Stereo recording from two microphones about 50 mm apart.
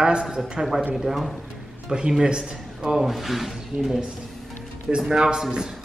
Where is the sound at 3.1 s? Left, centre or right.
Centre.